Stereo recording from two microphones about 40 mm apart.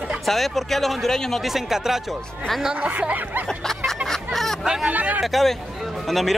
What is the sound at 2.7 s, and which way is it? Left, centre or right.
Speech, right.